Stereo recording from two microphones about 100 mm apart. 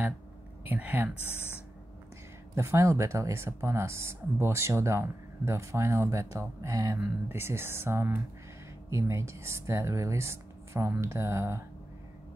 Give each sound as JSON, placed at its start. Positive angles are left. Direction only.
{"t": 0.7, "sound": "speech", "side_deg": -15}
{"t": 2.5, "sound": "speech", "side_deg": -30}